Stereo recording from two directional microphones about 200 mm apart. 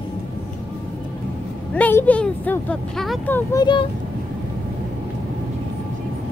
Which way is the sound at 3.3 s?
20° left (ahead or behind).